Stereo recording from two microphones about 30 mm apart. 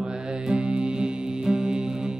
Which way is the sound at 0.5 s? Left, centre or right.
Right.